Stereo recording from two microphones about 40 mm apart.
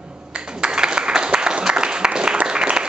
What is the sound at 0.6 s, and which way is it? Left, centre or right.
Applause, right.